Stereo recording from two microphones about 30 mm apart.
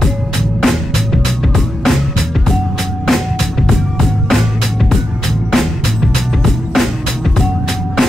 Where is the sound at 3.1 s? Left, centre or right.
Centre.